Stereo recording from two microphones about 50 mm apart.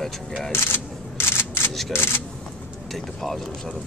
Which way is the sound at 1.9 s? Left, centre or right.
Left.